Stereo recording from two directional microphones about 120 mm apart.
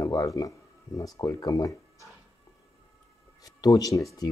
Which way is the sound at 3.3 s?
30° left (ahead or behind).